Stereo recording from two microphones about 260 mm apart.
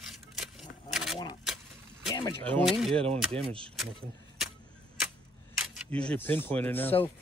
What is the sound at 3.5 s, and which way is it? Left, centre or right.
Speech, right.